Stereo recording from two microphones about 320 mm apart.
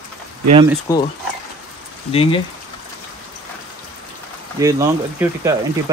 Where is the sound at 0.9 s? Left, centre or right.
Centre.